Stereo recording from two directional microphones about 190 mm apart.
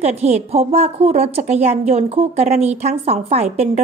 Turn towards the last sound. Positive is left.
turn(degrees=-35)  # may be behind; listen again after turning